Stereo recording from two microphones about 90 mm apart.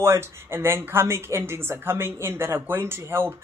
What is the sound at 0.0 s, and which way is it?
A woman's voice, 30° right (ahead or behind).